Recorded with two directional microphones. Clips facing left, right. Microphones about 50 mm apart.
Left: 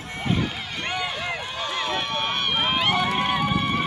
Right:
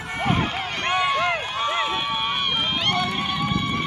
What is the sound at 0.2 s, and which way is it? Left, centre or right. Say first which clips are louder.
Run: right 3 dB; right.